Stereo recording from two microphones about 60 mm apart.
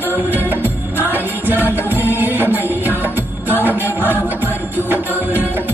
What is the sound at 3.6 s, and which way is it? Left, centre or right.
Music, right.